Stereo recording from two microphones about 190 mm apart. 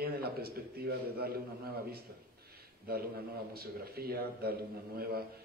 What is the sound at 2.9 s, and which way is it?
A man's voice, 50° right (ahead or behind).